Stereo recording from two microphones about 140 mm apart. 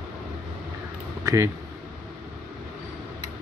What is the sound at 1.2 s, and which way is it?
Speech, 20° right (ahead or behind).